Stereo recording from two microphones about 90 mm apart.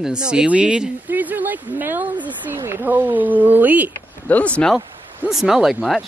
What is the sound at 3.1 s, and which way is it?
Speech, 20° right (ahead or behind).